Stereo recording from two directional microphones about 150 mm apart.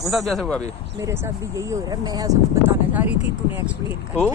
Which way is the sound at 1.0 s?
20° right (ahead or behind).